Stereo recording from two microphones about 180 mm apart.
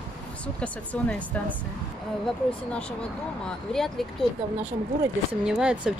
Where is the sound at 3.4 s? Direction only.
Centre (ahead or behind).